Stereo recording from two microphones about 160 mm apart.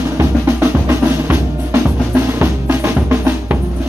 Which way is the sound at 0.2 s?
15° right (ahead or behind).